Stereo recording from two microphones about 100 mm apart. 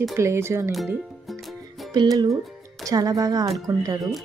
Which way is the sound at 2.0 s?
40° right (ahead or behind).